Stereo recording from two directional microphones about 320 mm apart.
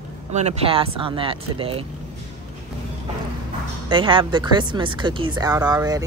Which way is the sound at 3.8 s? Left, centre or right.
Centre.